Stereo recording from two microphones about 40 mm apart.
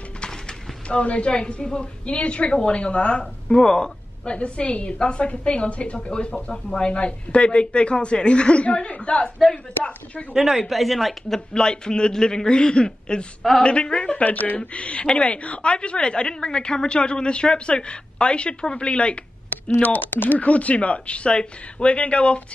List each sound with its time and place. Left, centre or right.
0.8 s a woman's voice: left
4.4 s a woman's voice: left
10.3 s speech: centre
11.5 s a woman's voice: left
14.2 s speech: left
14.6 s a woman's voice: left
19.5 s speech: left